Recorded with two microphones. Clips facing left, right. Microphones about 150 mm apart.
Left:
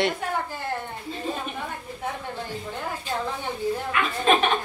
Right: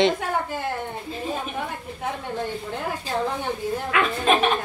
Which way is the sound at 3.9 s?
90° right.